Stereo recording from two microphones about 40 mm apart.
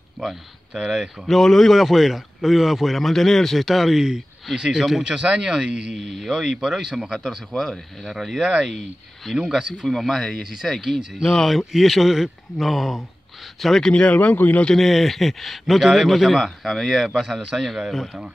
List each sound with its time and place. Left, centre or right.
0.2 s speech: centre
1.2 s speech: centre
1.8 s speech: centre
5.9 s speech: centre
6.3 s speech: centre
7.2 s speech: centre
10.4 s speech: centre
13.8 s speech: left
14.3 s speech: left
14.8 s speech: centre